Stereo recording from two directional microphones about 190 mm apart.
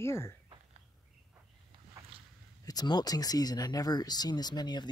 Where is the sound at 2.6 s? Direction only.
20° left (ahead or behind).